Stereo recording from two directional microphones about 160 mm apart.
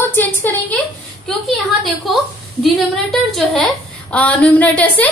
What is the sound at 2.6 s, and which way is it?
A woman's voice, centre (ahead or behind).